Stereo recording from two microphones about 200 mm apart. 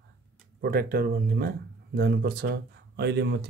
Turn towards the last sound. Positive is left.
turn(degrees=-55)  # may be behind; listen again after turning